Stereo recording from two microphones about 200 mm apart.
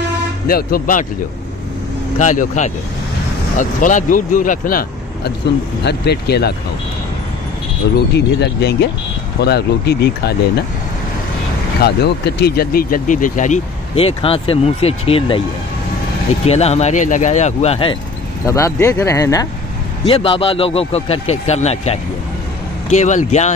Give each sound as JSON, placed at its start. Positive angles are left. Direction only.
{"t": 0.5, "sound": "speech", "side_deg": 45}
{"t": 2.1, "sound": "speech", "side_deg": 40}
{"t": 8.1, "sound": "speech", "side_deg": 55}
{"t": 11.8, "sound": "speech", "side_deg": 55}
{"t": 16.4, "sound": "speech", "side_deg": 30}
{"t": 18.5, "sound": "speech", "side_deg": 15}
{"t": 20.1, "sound": "a man's voice", "side_deg": 25}